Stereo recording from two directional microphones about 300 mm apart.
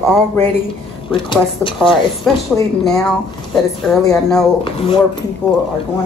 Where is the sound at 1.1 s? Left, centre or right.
Centre.